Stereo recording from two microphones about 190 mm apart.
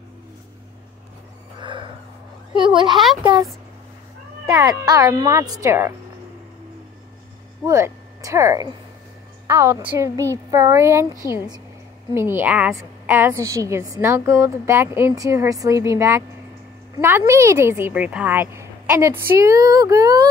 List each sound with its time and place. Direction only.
1.6 s dog: 25° right (ahead or behind)
2.6 s a child's voice: 25° right (ahead or behind)
4.5 s a child's voice: 20° right (ahead or behind)
7.6 s a woman's voice: 15° right (ahead or behind)